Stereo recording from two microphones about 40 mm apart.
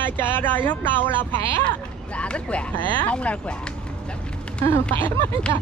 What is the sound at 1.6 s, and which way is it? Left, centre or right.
Speech, left.